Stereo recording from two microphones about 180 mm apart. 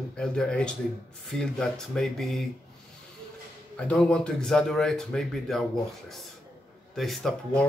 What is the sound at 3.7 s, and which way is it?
Speech, 5° left (ahead or behind).